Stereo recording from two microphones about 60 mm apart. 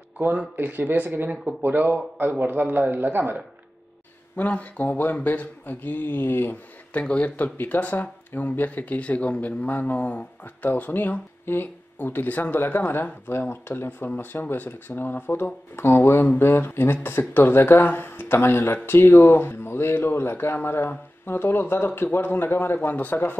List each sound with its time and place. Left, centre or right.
0.6 s speech: right
4.4 s speech: left
6.9 s speech: left